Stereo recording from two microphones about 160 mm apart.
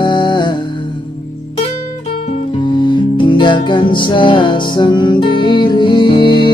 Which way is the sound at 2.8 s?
30° left (ahead or behind).